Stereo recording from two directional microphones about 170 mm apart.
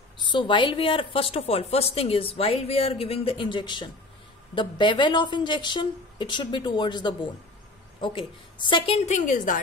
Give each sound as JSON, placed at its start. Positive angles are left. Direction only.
{"t": 0.2, "sound": "a woman's voice", "side_deg": 30}